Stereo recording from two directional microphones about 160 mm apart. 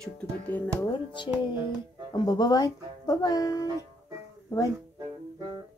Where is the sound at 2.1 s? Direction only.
25° left (ahead or behind).